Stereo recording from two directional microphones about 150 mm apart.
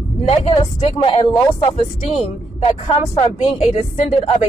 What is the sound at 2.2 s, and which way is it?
Speech, 40° left (ahead or behind).